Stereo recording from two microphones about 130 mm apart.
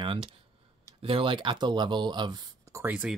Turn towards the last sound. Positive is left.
turn(degrees=-15)  # may be behind; listen again after turning